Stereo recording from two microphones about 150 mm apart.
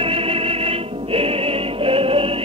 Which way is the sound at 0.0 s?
40° right (ahead or behind).